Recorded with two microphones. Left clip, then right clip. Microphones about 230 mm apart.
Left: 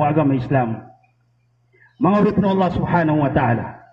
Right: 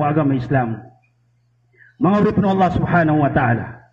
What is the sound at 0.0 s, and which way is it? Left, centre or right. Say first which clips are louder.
Speech: left 1 dB; right.